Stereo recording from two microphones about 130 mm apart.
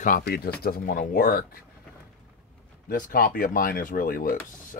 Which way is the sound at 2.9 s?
90° left.